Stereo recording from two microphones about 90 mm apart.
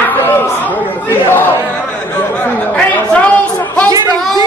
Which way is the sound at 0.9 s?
25° left (ahead or behind).